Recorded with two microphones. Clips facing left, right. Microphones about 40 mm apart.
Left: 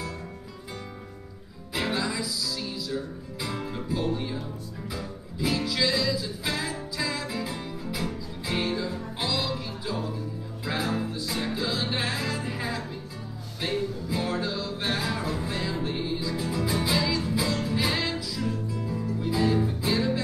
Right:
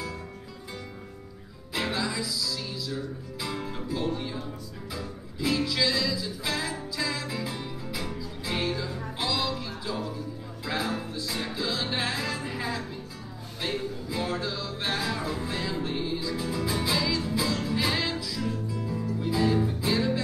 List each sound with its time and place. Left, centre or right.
1.7 s music: centre
9.2 s music: centre